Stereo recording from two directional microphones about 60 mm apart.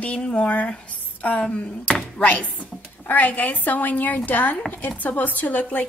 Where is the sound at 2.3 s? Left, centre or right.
Left.